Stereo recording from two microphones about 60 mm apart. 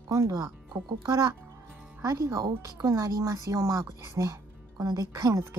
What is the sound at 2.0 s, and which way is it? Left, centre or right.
Speech, right.